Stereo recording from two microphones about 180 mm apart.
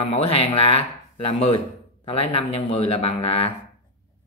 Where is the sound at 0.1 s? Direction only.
35° left (ahead or behind).